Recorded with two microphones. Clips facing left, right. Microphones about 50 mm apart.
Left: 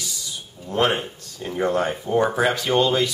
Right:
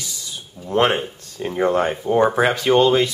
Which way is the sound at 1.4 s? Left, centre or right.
Centre.